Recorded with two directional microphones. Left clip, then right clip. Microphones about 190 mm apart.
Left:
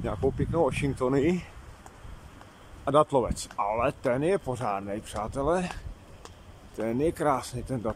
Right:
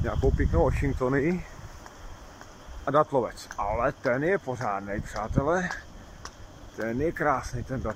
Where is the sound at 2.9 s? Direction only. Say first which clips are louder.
Left 1 dB; 5° left (ahead or behind).